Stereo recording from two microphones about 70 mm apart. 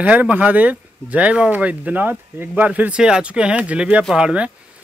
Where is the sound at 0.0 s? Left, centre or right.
Right.